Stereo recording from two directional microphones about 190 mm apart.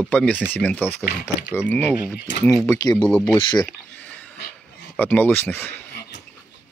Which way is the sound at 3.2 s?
25° left (ahead or behind).